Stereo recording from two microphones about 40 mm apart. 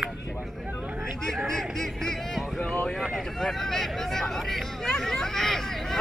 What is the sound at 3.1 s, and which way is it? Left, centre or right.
Hubbub, centre.